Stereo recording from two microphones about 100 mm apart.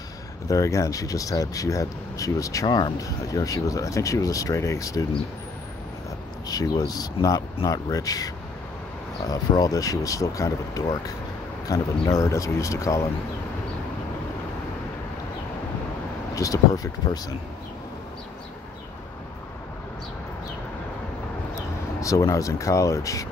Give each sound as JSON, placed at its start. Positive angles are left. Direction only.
{"t": 0.5, "sound": "speech", "side_deg": 30}
{"t": 6.4, "sound": "speech", "side_deg": 40}
{"t": 16.3, "sound": "speech", "side_deg": 35}
{"t": 22.0, "sound": "speech", "side_deg": 30}